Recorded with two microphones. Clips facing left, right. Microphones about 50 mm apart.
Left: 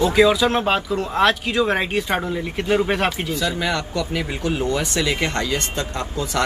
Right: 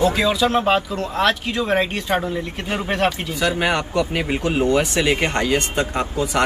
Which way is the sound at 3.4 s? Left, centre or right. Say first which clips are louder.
Right 5 dB; right.